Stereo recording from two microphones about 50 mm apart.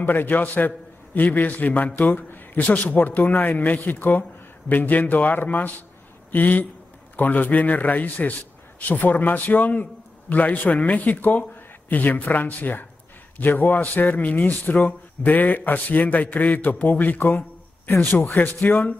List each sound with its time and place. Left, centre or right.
0.0 s a man's voice: left
17.3 s speech: left
18.6 s a man's voice: left